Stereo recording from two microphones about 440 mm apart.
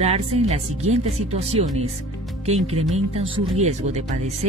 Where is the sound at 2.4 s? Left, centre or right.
Centre.